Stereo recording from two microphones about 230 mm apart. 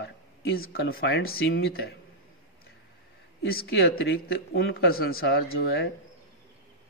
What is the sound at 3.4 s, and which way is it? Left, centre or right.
Speech, left.